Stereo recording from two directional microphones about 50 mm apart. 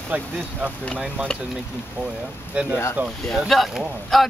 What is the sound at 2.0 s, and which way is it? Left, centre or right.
Speech, right.